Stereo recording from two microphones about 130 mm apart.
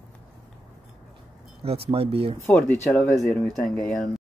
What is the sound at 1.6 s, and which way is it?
Speech, 45° right (ahead or behind).